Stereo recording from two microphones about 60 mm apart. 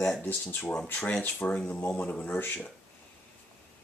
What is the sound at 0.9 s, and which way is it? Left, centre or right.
Speech, left.